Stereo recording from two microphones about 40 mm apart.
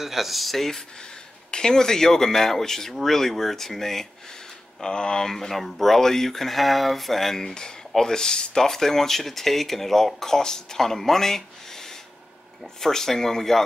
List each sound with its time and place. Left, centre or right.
0.0 s speech: centre
4.8 s speech: centre
5.5 s speech: centre